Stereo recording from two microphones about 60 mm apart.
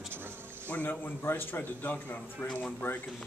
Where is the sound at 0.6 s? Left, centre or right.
Left.